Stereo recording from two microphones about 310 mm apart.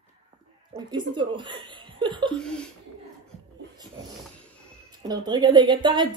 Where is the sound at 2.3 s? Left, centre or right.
Centre.